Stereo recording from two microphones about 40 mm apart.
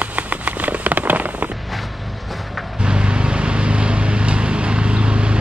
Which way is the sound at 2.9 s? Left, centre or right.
Right.